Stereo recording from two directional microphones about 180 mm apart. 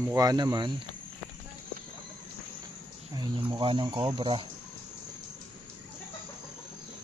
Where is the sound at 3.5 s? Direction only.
25° right (ahead or behind).